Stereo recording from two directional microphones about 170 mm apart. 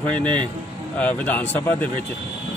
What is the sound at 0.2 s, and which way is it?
Speech, 30° right (ahead or behind).